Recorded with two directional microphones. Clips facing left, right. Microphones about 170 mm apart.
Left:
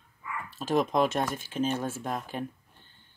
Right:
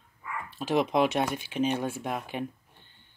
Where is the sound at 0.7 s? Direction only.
45° left (ahead or behind).